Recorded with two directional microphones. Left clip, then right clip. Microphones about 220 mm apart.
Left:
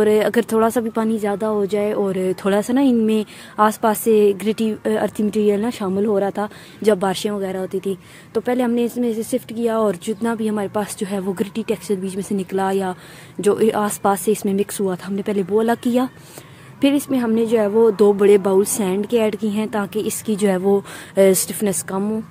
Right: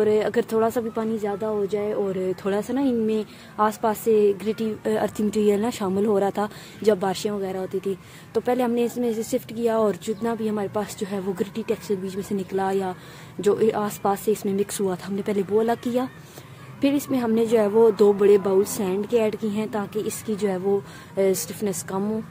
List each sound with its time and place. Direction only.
0.0 s a woman's voice: 30° left (ahead or behind)